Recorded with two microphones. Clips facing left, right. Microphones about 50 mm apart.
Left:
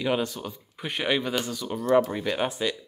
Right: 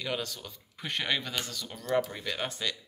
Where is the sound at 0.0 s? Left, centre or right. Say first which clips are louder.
Left 8 dB; left.